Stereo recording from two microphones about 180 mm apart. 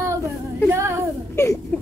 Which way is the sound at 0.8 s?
15° right (ahead or behind).